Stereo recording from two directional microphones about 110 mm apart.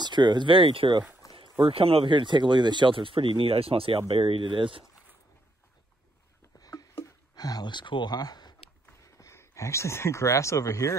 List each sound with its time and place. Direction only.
0.0 s speech: 40° right (ahead or behind)
1.3 s speech: 55° right (ahead or behind)
6.6 s a sound: 35° left (ahead or behind)
9.0 s speech: 25° left (ahead or behind)